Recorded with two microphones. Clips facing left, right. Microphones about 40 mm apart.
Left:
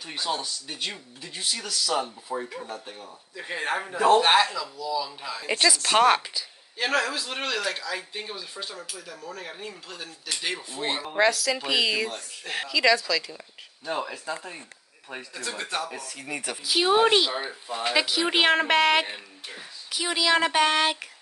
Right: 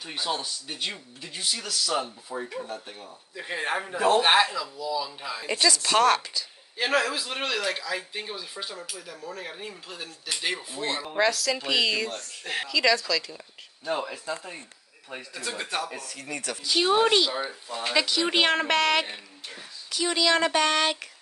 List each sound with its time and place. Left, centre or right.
0.0 s speech: centre
2.3 s a woman's voice: centre
2.7 s speech: centre
5.5 s a woman's voice: centre
6.8 s speech: centre
10.8 s a woman's voice: centre
11.2 s speech: centre
16.3 s a woman's voice: centre